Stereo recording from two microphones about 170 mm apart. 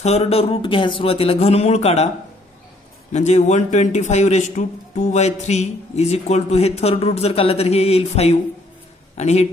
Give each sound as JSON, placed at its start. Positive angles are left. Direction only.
{"t": 0.0, "sound": "a man's voice", "side_deg": 40}
{"t": 3.1, "sound": "a man's voice", "side_deg": 40}